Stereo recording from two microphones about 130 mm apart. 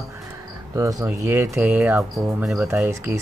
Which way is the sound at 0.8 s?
25° right (ahead or behind).